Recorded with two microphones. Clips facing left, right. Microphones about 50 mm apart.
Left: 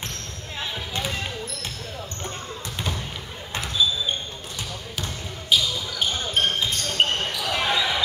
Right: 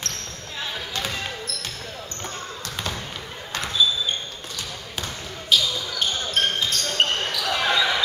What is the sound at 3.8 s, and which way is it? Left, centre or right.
Basketball bounce, centre.